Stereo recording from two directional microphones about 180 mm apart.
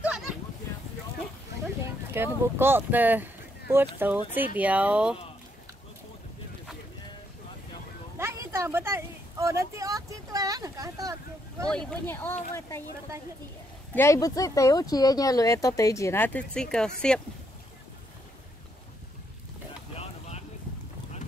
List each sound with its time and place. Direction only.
0.0 s a sound: 5° right (ahead or behind)
2.1 s speech: 10° right (ahead or behind)
8.2 s a sound: 15° right (ahead or behind)
11.7 s speech: 5° left (ahead or behind)
13.9 s speech: 15° left (ahead or behind)
20.0 s vehicle: 35° left (ahead or behind)